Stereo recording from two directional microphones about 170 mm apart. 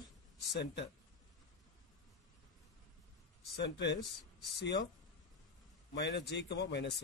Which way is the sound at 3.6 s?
90° left.